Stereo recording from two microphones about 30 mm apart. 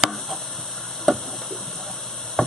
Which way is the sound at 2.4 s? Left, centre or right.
Centre.